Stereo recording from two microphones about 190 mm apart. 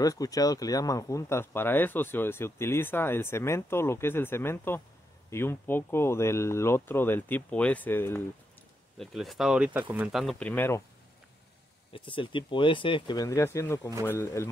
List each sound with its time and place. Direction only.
0.0 s speech: 20° left (ahead or behind)
8.9 s speech: centre (ahead or behind)
10.5 s speech: 10° left (ahead or behind)
11.9 s speech: 25° left (ahead or behind)